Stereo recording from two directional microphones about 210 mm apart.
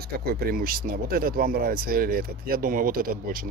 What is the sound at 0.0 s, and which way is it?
Speech, 45° right (ahead or behind).